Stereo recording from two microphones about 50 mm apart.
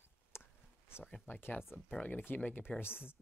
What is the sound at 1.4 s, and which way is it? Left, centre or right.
Speech, left.